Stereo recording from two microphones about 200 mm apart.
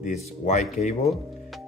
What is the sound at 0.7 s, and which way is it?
Speech, 35° left (ahead or behind).